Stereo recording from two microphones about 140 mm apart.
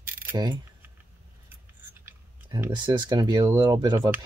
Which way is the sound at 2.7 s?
30° right (ahead or behind).